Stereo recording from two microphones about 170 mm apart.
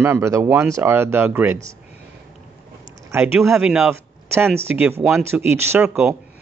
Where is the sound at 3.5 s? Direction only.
5° right (ahead or behind).